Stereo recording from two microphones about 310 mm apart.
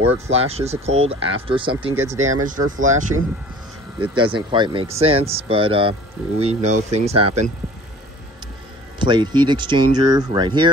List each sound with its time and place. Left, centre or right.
0.3 s speech: centre
2.1 s speech: right
2.9 s speech: right
9.0 s speech: centre